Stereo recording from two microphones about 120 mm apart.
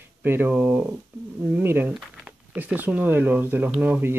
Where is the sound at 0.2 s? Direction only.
15° right (ahead or behind).